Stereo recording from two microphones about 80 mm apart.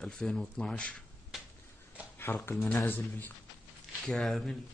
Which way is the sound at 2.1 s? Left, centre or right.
Left.